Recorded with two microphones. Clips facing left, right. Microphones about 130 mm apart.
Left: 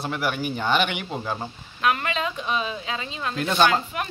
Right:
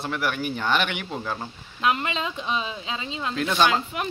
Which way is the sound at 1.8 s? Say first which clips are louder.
Left 1 dB; 25° right (ahead or behind).